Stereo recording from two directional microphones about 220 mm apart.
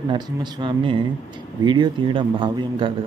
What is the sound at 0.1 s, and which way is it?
A man's voice, 20° right (ahead or behind).